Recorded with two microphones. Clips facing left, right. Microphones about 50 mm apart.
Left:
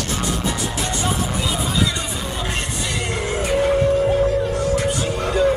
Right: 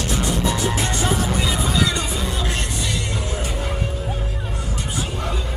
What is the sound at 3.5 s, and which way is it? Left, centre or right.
Music, left.